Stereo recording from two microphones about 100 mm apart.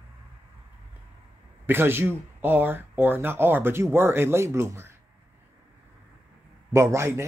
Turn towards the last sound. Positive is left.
turn(degrees=-25)  # may be behind; listen again after turning